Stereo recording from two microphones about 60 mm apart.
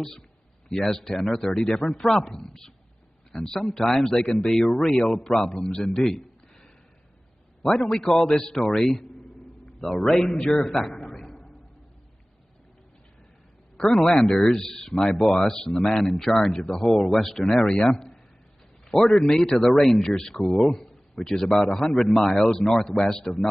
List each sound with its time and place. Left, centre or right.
0.7 s speech: centre
6.0 s a sound: centre
7.8 s speech: centre
10.6 s a man's voice: centre
14.0 s speech: centre